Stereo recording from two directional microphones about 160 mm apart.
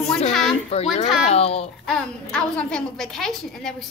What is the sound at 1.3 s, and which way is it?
Speech, 40° left (ahead or behind).